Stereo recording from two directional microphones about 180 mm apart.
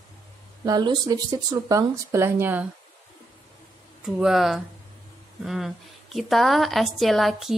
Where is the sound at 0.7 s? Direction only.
20° right (ahead or behind).